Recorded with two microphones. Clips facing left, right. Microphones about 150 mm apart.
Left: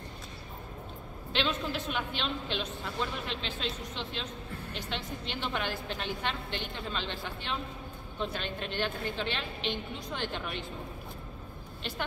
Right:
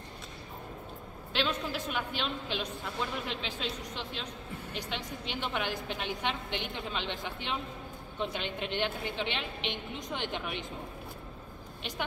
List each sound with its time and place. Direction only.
1.3 s a man's voice: 10° right (ahead or behind)